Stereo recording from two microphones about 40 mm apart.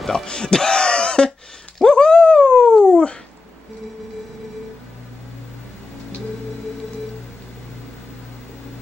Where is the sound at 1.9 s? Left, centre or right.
Centre.